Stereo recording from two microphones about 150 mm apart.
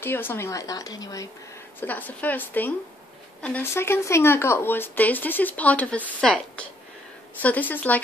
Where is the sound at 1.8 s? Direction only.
10° left (ahead or behind).